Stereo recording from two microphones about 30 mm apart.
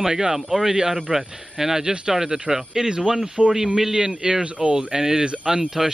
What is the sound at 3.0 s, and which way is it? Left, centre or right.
Speech, centre.